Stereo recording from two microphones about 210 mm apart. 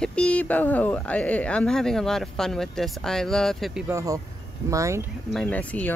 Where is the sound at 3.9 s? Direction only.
15° right (ahead or behind).